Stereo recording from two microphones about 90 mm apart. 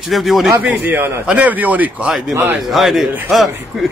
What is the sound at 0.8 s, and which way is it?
A man's voice, 20° right (ahead or behind).